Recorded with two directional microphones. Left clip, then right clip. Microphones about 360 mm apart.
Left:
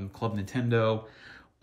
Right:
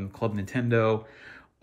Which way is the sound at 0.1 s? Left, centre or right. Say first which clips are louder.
Right 3 dB; centre.